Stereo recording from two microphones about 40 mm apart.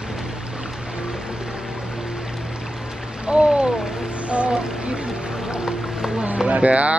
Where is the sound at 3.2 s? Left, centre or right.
Centre.